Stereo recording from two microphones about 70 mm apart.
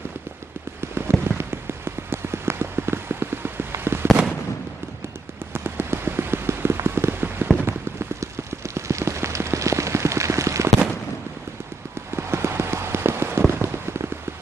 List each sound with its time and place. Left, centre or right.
0.7 s rain: right
1.2 s clip-clop: right
5.5 s rain on surface: right
12.2 s a sound: right
13.5 s fireworks: right